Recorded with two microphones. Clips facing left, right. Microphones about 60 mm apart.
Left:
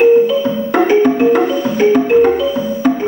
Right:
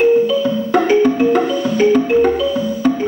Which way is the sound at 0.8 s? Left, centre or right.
Centre.